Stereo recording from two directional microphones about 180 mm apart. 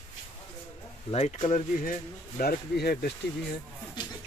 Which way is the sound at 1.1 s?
35° left (ahead or behind).